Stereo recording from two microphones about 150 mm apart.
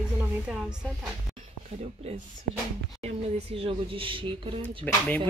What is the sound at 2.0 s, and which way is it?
Speech, 40° right (ahead or behind).